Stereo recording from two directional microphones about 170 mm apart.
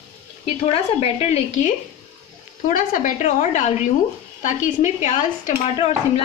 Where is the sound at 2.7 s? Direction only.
50° left (ahead or behind).